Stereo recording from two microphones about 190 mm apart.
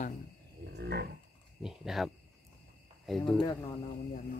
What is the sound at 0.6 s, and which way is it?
Livestock, 60° right (ahead or behind).